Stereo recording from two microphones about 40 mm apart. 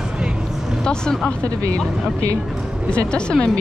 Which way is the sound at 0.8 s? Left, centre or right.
Left.